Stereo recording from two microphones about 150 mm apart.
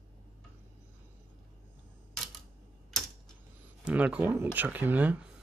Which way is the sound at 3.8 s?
10° right (ahead or behind).